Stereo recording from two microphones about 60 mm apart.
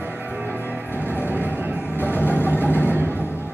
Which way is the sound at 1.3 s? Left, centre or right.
Right.